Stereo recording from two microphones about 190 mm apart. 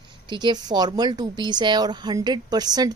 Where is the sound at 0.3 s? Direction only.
25° right (ahead or behind).